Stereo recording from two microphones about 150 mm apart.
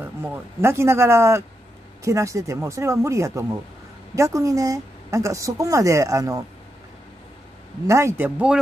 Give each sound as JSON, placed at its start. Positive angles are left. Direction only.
{"t": 0.0, "sound": "speech", "side_deg": -15}
{"t": 7.8, "sound": "speech", "side_deg": -20}